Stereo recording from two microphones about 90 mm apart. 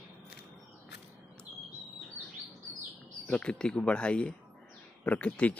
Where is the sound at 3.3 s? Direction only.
10° left (ahead or behind).